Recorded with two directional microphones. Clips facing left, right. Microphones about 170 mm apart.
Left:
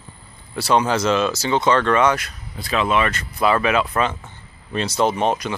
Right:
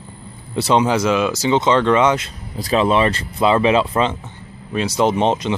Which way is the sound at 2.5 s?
35° right (ahead or behind).